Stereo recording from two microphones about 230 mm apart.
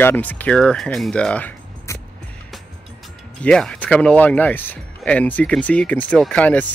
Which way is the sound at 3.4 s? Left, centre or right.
Centre.